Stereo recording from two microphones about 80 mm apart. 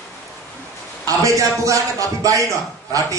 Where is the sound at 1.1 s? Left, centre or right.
Right.